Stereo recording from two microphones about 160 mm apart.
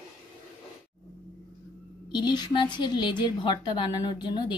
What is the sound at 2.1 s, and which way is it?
A woman's voice, 30° left (ahead or behind).